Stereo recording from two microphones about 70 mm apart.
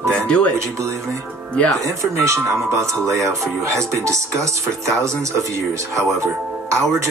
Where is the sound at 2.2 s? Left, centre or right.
Right.